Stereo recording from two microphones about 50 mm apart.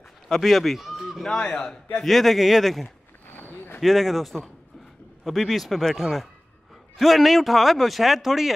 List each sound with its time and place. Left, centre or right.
0.3 s speech: centre
1.2 s speech: centre
2.0 s speech: centre
3.3 s a sound: left
3.8 s speech: centre